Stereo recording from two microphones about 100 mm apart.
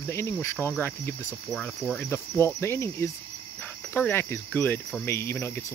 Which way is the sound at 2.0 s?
25° left (ahead or behind).